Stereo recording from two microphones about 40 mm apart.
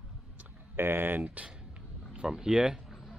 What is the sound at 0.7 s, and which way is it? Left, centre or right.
Speech, right.